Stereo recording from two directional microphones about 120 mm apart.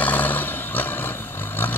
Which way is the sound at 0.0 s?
15° left (ahead or behind).